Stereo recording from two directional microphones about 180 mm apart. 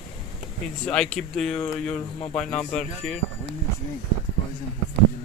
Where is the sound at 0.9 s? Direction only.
5° left (ahead or behind).